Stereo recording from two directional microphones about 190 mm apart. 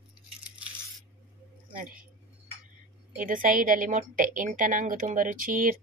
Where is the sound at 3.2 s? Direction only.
45° right (ahead or behind).